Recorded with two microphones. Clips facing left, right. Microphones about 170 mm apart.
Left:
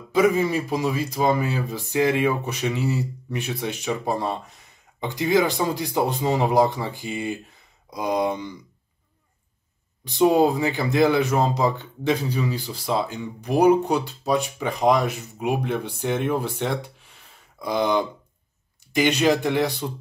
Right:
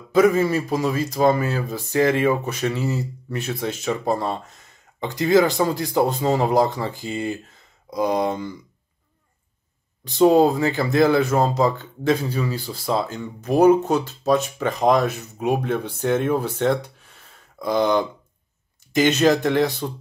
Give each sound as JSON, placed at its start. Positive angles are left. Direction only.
{"t": 0.1, "sound": "speech", "side_deg": 15}
{"t": 10.0, "sound": "speech", "side_deg": 15}